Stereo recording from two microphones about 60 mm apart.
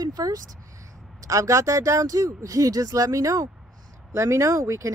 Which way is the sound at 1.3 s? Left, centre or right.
Right.